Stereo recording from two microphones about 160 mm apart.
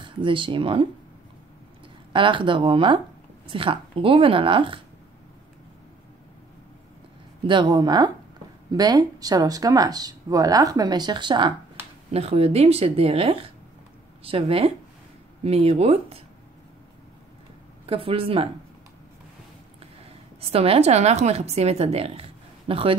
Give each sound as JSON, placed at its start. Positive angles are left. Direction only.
{"t": 0.0, "sound": "speech", "side_deg": -30}
{"t": 2.1, "sound": "speech", "side_deg": -30}
{"t": 7.4, "sound": "speech", "side_deg": -25}
{"t": 12.1, "sound": "speech", "side_deg": -40}
{"t": 17.8, "sound": "speech", "side_deg": -35}
{"t": 20.3, "sound": "a woman's voice", "side_deg": -40}